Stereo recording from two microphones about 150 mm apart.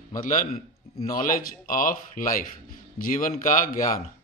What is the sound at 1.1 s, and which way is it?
A man's voice, 65° left (ahead or behind).